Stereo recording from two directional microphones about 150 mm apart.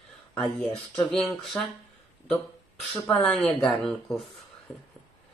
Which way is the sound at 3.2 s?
5° left (ahead or behind).